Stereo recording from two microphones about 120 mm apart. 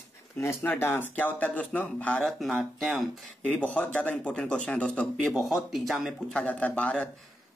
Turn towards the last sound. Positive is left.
turn(degrees=10)  # may be behind; listen again after turning